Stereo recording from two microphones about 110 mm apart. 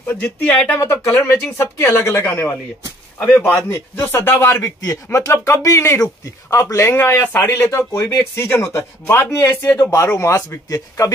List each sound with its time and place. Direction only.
0.0 s speech: 20° left (ahead or behind)
0.8 s speech: 30° left (ahead or behind)